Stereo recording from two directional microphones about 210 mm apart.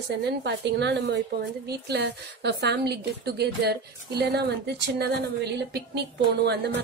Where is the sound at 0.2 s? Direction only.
55° right (ahead or behind).